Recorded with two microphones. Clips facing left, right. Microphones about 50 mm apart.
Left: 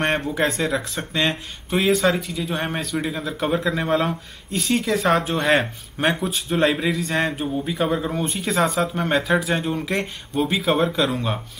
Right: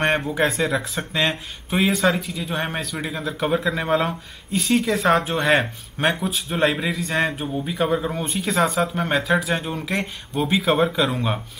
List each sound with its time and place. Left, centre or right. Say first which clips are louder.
0.0 s speech: right 1 dB; centre